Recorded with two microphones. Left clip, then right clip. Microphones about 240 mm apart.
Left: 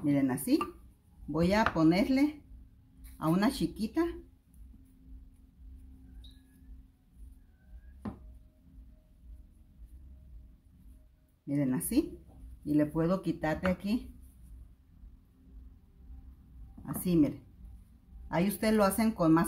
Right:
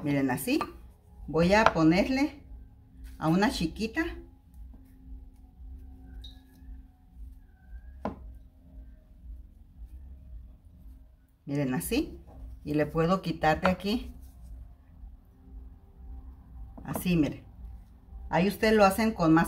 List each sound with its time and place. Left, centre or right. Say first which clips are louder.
0.0 s speech: right 1 dB; centre
11.5 s speech: right 1 dB; centre
16.8 s speech: even; centre
18.3 s speech: right 5 dB; centre